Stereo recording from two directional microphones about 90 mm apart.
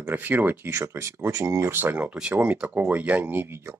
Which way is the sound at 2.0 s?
10° right (ahead or behind).